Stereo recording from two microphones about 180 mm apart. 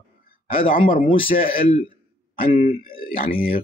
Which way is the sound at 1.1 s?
30° left (ahead or behind).